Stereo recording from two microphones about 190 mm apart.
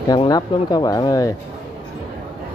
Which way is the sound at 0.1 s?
20° left (ahead or behind).